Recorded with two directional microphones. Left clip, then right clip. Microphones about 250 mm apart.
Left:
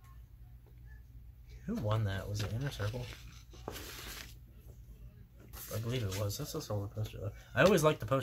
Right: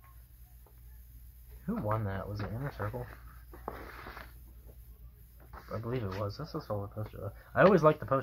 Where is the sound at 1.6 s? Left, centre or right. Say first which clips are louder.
Right 3 dB; centre.